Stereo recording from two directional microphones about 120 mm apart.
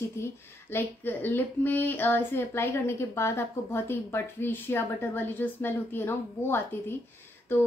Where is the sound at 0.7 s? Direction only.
15° left (ahead or behind).